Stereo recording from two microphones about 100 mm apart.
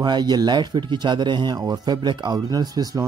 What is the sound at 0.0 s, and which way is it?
Speech, 45° right (ahead or behind).